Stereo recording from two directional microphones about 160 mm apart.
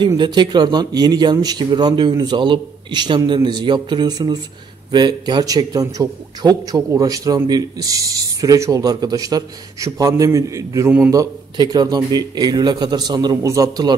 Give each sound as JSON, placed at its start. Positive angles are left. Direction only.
{"t": 0.2, "sound": "a man's voice", "side_deg": -30}